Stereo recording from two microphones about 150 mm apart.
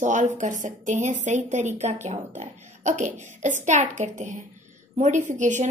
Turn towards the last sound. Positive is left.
turn(degrees=-55)  # may be behind; listen again after turning